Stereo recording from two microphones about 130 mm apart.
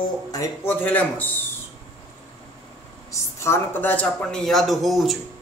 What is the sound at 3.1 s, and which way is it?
Speech, 20° left (ahead or behind).